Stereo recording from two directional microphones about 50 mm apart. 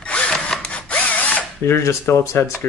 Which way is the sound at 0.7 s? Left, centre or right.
Left.